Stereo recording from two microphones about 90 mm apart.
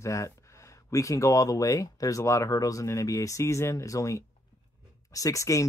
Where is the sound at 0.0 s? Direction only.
35° left (ahead or behind).